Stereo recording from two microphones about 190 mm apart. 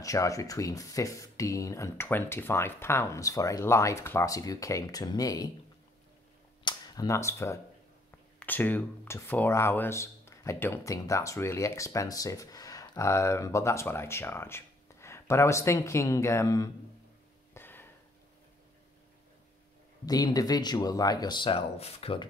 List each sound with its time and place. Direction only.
0.0 s speech: 15° left (ahead or behind)
6.6 s cap gun: 20° left (ahead or behind)
8.4 s speech: 10° left (ahead or behind)
17.6 s a sound: 10° left (ahead or behind)
20.1 s speech: 20° left (ahead or behind)